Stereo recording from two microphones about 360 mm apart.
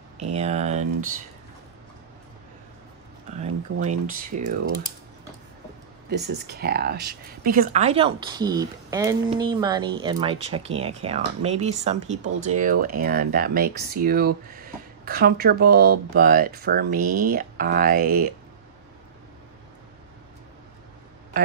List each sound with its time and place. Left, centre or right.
0.2 s speech: centre
3.3 s speech: centre
6.0 s speech: right